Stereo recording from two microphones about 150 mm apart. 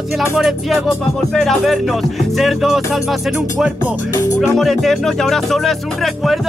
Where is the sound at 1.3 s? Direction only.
Centre (ahead or behind).